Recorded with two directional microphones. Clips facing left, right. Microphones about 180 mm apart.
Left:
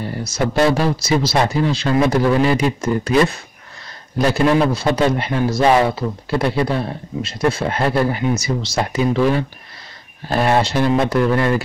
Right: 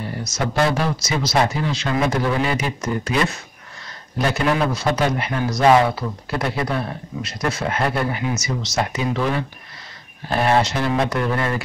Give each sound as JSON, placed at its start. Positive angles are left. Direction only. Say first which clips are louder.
{"t": 0.2, "sound": "speech", "louder": "left 4 dB", "side_deg": 30}
{"t": 4.3, "sound": "a man's voice", "louder": "left 5 dB", "side_deg": 30}
{"t": 10.3, "sound": "a man's voice", "louder": "left 2 dB", "side_deg": 30}